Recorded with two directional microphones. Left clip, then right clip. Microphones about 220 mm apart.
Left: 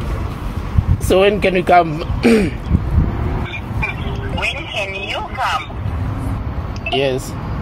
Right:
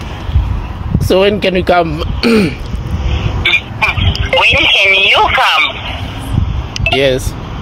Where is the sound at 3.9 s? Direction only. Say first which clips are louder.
Right 11 dB; 55° right (ahead or behind).